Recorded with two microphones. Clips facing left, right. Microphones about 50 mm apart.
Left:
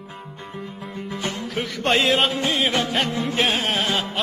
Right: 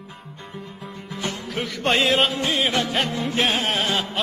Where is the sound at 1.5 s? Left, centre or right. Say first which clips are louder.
Left 1 dB; centre.